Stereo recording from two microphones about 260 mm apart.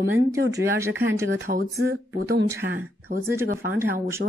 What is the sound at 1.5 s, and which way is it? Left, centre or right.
Speech, right.